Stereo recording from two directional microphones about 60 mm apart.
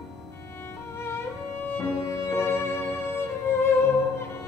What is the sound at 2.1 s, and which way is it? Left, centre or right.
Music, left.